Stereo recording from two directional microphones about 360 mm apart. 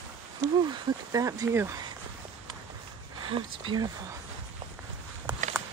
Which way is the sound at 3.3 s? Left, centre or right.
Centre.